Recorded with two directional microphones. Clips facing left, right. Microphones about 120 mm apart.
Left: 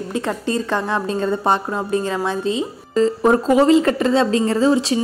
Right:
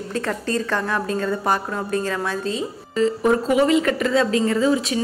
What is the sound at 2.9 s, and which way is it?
A woman's voice, 35° left (ahead or behind).